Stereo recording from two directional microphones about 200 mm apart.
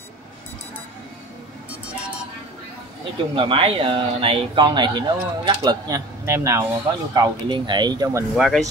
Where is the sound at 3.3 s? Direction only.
25° right (ahead or behind).